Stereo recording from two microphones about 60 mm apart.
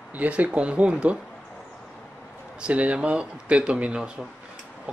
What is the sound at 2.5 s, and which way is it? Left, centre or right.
Speech, right.